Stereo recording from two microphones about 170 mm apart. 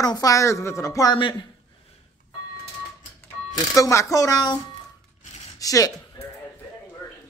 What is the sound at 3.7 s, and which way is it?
Speech, 20° left (ahead or behind).